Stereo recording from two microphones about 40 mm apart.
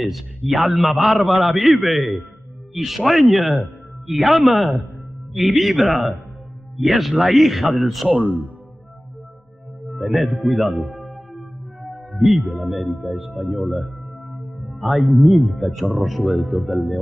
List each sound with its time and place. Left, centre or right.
0.5 s a man's voice: centre
8.1 s speech: right
9.8 s music: centre
12.9 s a man's voice: centre
16.3 s speech: centre
16.5 s a man's voice: centre